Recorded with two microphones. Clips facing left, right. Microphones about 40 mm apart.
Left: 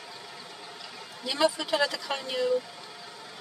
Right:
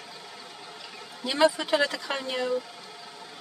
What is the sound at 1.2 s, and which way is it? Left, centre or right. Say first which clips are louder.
Speech: right 3 dB; centre.